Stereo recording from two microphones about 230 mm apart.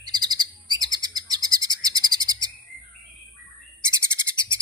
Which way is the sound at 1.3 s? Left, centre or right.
Centre.